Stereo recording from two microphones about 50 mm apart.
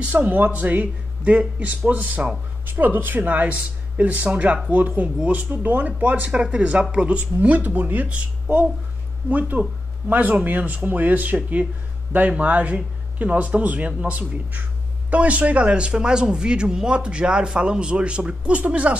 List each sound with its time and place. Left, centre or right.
0.1 s speech: right
3.3 s speech: right
6.4 s speech: right
7.3 s speech: right
9.3 s speech: right